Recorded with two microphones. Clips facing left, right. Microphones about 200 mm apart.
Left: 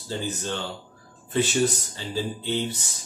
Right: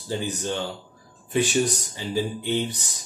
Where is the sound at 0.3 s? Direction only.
15° right (ahead or behind).